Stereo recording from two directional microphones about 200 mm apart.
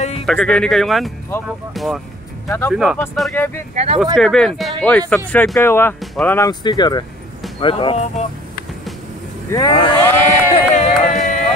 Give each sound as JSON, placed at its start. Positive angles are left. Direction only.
{"t": 0.3, "sound": "speech", "side_deg": 5}
{"t": 2.4, "sound": "speech", "side_deg": 10}
{"t": 2.7, "sound": "speech", "side_deg": -5}
{"t": 3.3, "sound": "speech", "side_deg": 10}
{"t": 3.7, "sound": "speech", "side_deg": -30}
{"t": 4.0, "sound": "speech", "side_deg": 0}
{"t": 9.5, "sound": "speech", "side_deg": 20}
{"t": 10.5, "sound": "a sound", "side_deg": 35}